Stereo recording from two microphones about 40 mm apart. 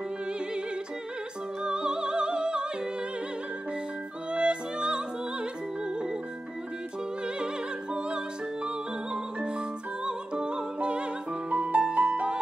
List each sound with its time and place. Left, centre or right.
1.6 s music: right
4.3 s music: right
7.3 s music: right